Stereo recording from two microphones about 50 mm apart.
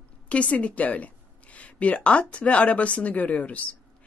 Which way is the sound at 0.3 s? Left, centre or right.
Left.